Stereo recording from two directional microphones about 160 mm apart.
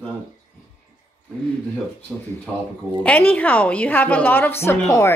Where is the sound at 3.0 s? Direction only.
10° left (ahead or behind).